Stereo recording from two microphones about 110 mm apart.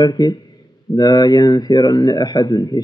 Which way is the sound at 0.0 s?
35° left (ahead or behind).